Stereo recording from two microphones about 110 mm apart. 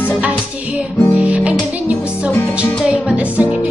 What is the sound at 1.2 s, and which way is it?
Music, 10° right (ahead or behind).